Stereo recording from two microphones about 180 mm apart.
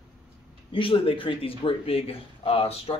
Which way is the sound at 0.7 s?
30° left (ahead or behind).